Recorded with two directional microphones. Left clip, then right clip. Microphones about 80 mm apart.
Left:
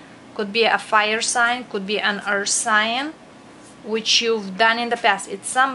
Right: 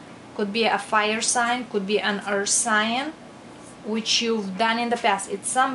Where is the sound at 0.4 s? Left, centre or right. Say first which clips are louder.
Left 4 dB; left.